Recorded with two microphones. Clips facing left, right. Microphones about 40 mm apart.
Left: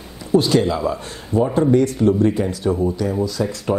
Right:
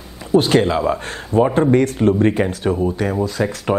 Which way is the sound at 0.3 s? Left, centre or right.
Right.